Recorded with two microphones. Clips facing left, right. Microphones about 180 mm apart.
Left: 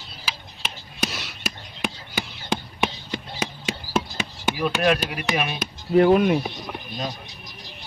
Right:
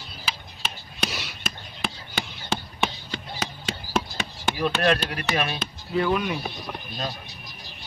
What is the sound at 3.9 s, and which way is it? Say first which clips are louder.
Speech: left 1 dB; 5° left (ahead or behind).